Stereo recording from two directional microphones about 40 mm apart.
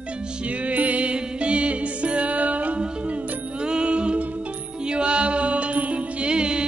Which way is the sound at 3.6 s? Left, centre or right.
Right.